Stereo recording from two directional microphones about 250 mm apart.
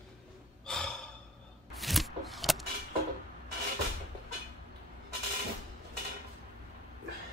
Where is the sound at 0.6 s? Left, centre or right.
Centre.